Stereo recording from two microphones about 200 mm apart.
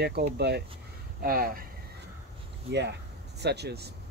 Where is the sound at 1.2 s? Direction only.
45° right (ahead or behind).